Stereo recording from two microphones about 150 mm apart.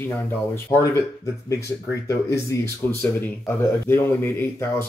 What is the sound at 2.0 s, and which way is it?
Speech, 20° left (ahead or behind).